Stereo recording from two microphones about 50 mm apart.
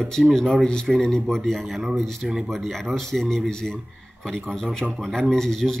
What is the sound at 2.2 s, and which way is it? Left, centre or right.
Speech, centre.